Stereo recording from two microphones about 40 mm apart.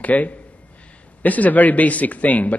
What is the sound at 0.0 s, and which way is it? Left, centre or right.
A man's voice, left.